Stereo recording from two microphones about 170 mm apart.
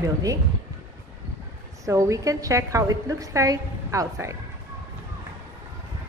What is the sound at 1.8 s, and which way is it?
A woman's voice, 20° right (ahead or behind).